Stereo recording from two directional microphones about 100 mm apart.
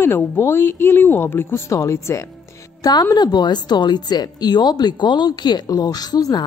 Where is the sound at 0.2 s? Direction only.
25° left (ahead or behind).